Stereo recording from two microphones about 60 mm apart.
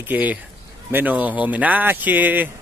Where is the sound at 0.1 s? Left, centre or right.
Right.